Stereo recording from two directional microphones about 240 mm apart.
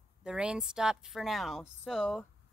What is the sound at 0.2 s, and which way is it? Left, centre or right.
A woman's voice, centre.